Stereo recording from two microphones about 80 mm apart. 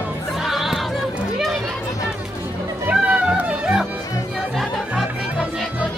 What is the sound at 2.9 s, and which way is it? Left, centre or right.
Music, centre.